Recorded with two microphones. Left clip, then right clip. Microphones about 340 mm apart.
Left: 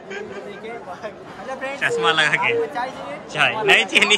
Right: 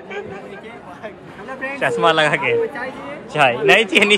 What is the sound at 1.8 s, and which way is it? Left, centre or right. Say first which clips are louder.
A man's voice: right 3 dB; centre.